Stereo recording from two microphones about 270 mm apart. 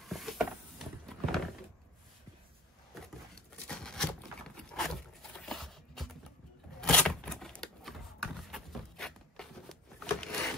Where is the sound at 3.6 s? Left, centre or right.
Centre.